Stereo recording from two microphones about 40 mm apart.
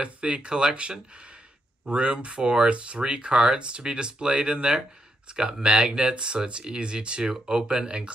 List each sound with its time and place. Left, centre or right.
0.0 s speech: right